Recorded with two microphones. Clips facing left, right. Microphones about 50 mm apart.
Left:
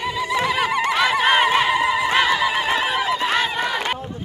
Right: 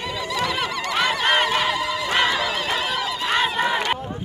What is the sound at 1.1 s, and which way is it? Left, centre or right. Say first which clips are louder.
Honk: left 3 dB; centre.